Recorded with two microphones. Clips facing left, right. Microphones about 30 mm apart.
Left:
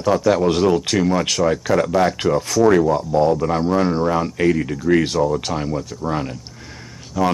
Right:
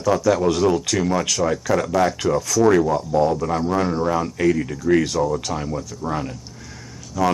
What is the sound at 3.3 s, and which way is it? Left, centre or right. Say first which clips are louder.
A man's voice: left 3 dB; left.